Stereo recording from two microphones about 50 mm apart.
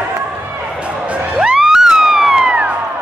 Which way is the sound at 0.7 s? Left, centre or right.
Right.